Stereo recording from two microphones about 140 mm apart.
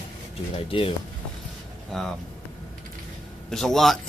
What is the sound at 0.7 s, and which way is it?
Speech, 40° left (ahead or behind).